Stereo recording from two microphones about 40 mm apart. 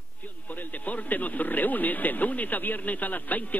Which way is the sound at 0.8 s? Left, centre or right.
Left.